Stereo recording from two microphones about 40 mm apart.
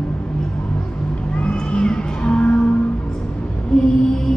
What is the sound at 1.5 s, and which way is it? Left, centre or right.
Music, left.